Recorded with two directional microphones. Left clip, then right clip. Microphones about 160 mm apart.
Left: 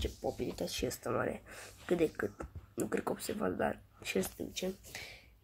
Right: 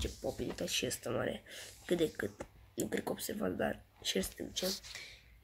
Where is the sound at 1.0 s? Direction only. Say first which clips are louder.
Left 2 dB; 15° right (ahead or behind).